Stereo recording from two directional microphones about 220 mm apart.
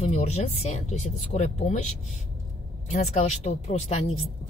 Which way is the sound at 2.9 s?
30° left (ahead or behind).